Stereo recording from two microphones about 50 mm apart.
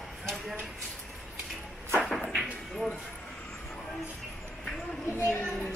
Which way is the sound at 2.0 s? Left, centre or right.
Centre.